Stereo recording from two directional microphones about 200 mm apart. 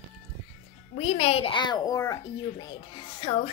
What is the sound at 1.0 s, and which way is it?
A child's voice, 30° left (ahead or behind).